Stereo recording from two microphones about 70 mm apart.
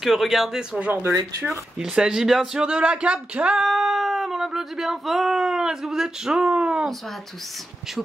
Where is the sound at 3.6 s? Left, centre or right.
Centre.